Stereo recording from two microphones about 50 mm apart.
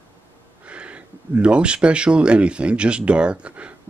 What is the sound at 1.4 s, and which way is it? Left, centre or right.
Speech, right.